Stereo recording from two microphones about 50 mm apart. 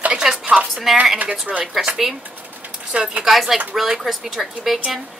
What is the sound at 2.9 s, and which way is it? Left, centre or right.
Speech, right.